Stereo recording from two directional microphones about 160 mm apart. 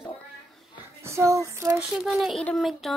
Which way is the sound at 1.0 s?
15° right (ahead or behind).